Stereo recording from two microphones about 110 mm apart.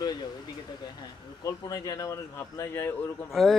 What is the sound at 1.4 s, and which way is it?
Speech, 30° left (ahead or behind).